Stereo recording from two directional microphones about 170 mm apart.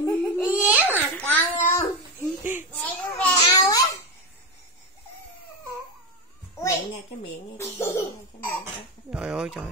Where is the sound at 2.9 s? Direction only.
10° left (ahead or behind).